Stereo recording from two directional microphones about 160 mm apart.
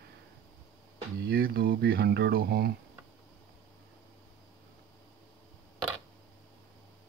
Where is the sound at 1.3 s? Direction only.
70° right (ahead or behind).